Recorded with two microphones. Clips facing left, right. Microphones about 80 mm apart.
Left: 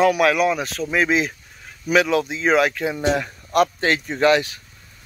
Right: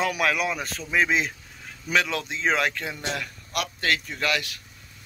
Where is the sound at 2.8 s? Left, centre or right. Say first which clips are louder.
Left 10 dB; left.